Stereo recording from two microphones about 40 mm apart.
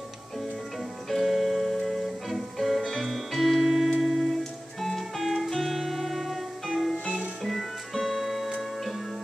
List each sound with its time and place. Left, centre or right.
1.1 s music: centre